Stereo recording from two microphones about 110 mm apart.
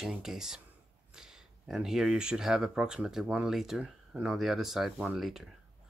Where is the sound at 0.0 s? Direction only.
5° right (ahead or behind).